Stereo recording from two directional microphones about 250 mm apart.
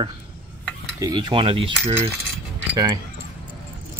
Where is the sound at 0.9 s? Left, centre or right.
Centre.